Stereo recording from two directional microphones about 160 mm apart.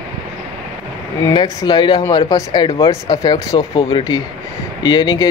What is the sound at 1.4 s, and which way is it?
Speech, 25° left (ahead or behind).